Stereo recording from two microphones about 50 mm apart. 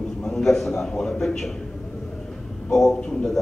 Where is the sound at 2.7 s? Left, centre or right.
Centre.